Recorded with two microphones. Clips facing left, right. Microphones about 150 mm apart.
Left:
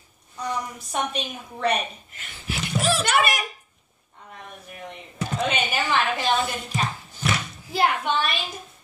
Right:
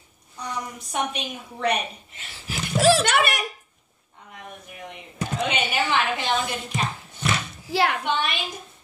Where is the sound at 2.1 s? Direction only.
35° right (ahead or behind).